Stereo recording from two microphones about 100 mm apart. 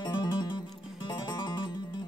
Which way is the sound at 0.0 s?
50° left (ahead or behind).